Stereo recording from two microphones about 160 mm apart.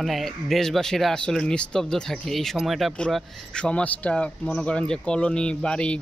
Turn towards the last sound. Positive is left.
turn(degrees=5)  # may be behind; listen again after turning